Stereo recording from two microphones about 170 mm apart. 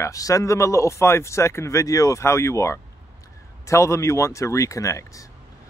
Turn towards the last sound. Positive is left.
turn(degrees=20)  # may be behind; listen again after turning